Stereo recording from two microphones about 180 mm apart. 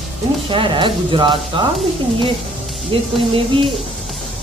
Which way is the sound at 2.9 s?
30° right (ahead or behind).